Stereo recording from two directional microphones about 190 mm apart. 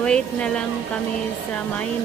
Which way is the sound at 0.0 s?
5° left (ahead or behind).